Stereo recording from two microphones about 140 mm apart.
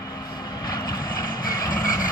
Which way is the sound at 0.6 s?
30° left (ahead or behind).